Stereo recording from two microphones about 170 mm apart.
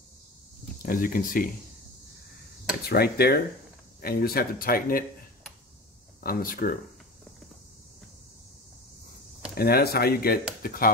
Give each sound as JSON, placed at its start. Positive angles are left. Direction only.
{"t": 0.8, "sound": "speech", "side_deg": 55}
{"t": 2.9, "sound": "speech", "side_deg": 65}
{"t": 6.2, "sound": "speech", "side_deg": 55}
{"t": 9.6, "sound": "speech", "side_deg": 65}